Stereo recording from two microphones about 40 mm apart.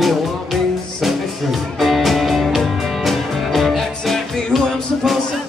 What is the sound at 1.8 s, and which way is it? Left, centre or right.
Music, centre.